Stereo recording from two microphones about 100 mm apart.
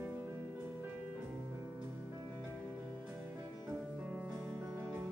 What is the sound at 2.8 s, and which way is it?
Music, 25° right (ahead or behind).